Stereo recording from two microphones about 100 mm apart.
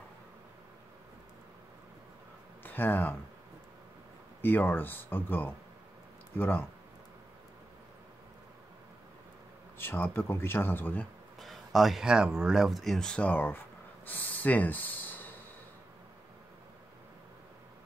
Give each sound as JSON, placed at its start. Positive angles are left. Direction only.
{"t": 2.6, "sound": "speech", "side_deg": 20}
{"t": 4.4, "sound": "speech", "side_deg": 20}
{"t": 9.8, "sound": "speech", "side_deg": 20}
{"t": 11.3, "sound": "speech", "side_deg": 0}
{"t": 14.0, "sound": "snort", "side_deg": 20}